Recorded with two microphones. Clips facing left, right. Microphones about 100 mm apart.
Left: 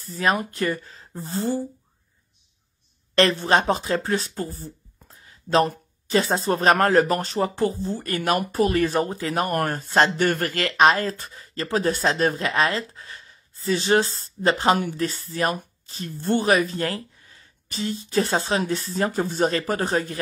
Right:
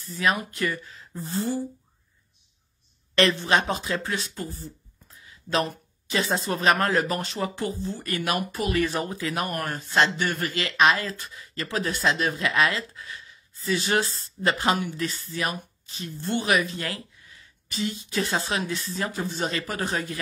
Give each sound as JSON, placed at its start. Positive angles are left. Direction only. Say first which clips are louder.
{"t": 0.0, "sound": "speech", "louder": "left 2 dB", "side_deg": 40}
{"t": 3.2, "sound": "speech", "louder": "left 3 dB", "side_deg": 40}
{"t": 9.5, "sound": "speech", "louder": "left 6 dB", "side_deg": 50}
{"t": 10.8, "sound": "speech", "louder": "left 3 dB", "side_deg": 40}